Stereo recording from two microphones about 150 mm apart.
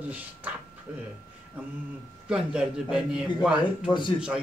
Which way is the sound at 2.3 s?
5° right (ahead or behind).